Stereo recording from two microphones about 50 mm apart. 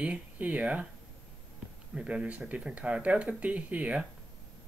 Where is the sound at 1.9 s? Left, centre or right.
Right.